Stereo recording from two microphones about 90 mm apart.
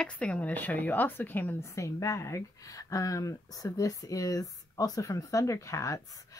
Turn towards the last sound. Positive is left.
turn(degrees=35)  # may be behind; listen again after turning